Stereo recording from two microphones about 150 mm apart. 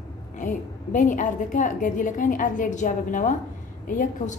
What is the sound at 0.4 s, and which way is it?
A woman's voice, 60° left (ahead or behind).